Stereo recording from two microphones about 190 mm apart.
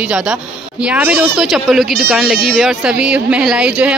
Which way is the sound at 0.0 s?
5° right (ahead or behind).